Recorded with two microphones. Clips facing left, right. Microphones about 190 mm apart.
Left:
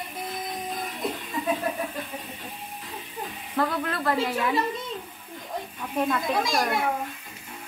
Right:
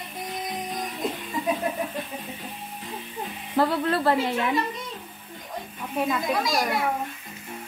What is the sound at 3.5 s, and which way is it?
Speech, 30° right (ahead or behind).